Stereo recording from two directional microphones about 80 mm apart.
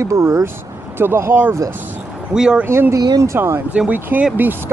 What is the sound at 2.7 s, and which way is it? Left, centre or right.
Speech, right.